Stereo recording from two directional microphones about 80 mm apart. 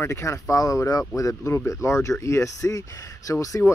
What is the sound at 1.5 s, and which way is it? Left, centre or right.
Speech, left.